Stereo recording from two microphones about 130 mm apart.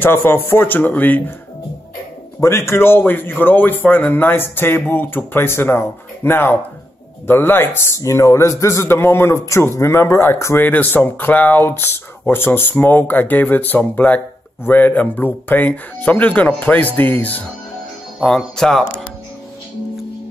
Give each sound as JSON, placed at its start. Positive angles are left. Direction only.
{"t": 0.0, "sound": "speech", "side_deg": 15}
{"t": 2.4, "sound": "speech", "side_deg": 20}